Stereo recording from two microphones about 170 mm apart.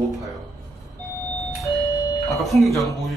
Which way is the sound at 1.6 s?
20° left (ahead or behind).